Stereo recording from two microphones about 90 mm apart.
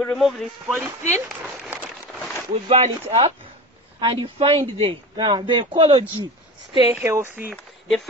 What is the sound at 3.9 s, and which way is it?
Speech, 65° right (ahead or behind).